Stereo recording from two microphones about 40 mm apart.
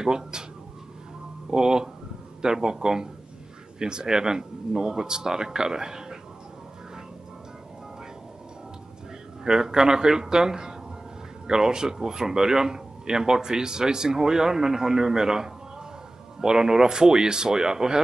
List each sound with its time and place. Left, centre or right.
0.0 s speech: centre
1.5 s speech: centre
9.4 s speech: centre